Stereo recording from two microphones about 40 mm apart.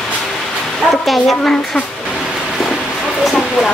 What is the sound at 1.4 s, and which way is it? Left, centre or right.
Speech, centre.